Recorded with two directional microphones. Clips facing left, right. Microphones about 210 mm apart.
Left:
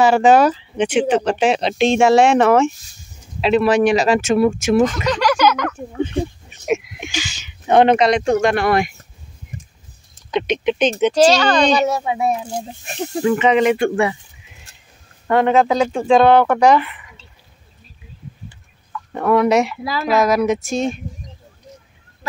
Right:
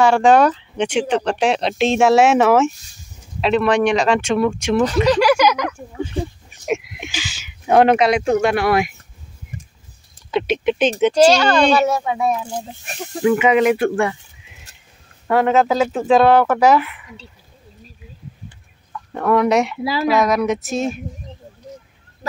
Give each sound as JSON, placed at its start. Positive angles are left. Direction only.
{"t": 0.0, "sound": "speech", "side_deg": 5}
{"t": 5.2, "sound": "a sound", "side_deg": -10}
{"t": 6.6, "sound": "speech", "side_deg": 0}
{"t": 10.3, "sound": "speech", "side_deg": -5}
{"t": 11.9, "sound": "a child's voice", "side_deg": 25}
{"t": 13.2, "sound": "speech", "side_deg": -5}
{"t": 15.2, "sound": "speech", "side_deg": -5}
{"t": 19.1, "sound": "speech", "side_deg": 0}